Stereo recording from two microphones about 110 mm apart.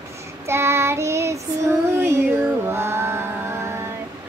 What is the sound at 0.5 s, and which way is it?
Child singing, 25° right (ahead or behind).